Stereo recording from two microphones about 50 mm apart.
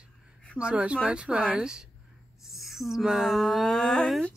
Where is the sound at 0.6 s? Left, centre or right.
Right.